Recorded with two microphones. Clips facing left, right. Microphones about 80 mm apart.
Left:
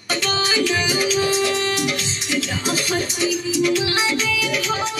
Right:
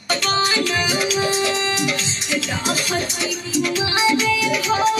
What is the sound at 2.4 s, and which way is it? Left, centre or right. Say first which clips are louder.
Speech: even; right.